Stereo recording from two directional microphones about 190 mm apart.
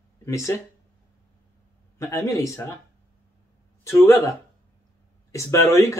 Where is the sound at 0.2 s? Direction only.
15° left (ahead or behind).